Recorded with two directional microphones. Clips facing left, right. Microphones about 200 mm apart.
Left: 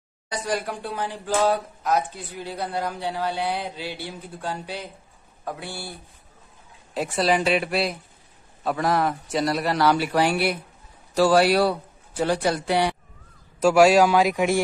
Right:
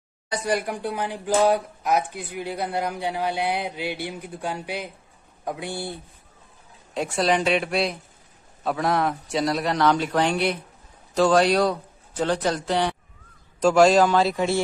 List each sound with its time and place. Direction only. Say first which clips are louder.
0.3 s speech: right 2 dB; 15° right (ahead or behind)
6.9 s a man's voice: even; centre (ahead or behind)